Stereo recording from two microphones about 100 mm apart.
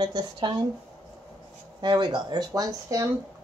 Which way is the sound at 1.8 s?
45° right (ahead or behind).